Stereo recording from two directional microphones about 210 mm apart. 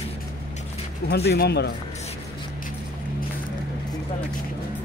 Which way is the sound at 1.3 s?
50° left (ahead or behind).